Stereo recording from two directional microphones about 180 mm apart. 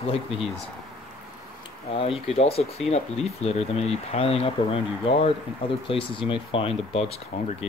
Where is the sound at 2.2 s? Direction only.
35° left (ahead or behind).